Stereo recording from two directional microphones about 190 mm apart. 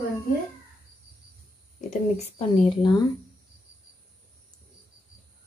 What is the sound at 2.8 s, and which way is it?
Speech, 20° left (ahead or behind).